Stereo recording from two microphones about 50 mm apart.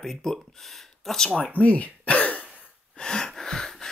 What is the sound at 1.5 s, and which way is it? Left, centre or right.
Speech, left.